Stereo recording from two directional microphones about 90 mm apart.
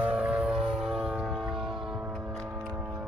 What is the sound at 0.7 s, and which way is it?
Music, 5° right (ahead or behind).